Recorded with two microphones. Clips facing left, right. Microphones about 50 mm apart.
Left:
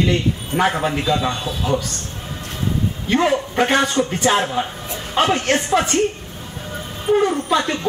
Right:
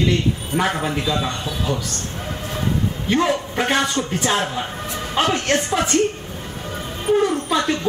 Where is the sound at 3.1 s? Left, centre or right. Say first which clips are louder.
Left 3 dB; centre.